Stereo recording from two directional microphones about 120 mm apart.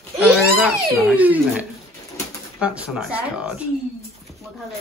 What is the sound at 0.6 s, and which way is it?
Speech, 10° right (ahead or behind).